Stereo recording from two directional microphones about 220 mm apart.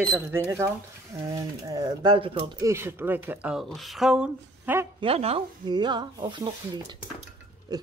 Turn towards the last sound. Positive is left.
turn(degrees=-20)  # may be behind; listen again after turning